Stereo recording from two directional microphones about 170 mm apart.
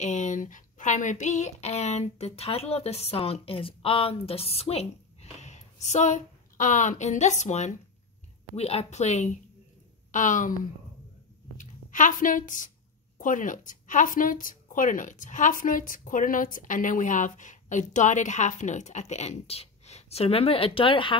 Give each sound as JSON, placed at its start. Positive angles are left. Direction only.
{"t": 0.0, "sound": "speech", "side_deg": 45}